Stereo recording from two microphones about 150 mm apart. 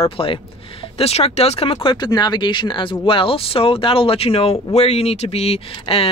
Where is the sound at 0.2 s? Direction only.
35° left (ahead or behind).